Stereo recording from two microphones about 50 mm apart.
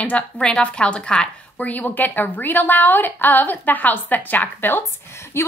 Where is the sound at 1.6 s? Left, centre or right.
Left.